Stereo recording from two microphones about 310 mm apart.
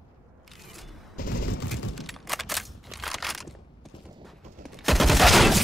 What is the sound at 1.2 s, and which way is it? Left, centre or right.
Fusillade, left.